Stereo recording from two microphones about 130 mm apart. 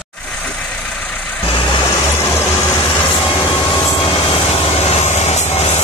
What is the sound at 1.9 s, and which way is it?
Vehicle, 20° left (ahead or behind).